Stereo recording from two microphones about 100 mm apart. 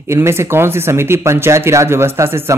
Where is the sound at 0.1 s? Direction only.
25° right (ahead or behind).